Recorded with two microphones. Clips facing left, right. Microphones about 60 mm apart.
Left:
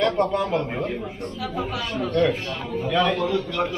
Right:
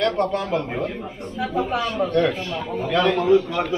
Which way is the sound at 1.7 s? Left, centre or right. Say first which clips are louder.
Right 5 dB; right.